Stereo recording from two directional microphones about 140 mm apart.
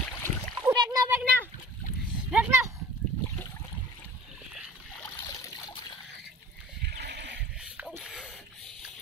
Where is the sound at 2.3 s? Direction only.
15° right (ahead or behind).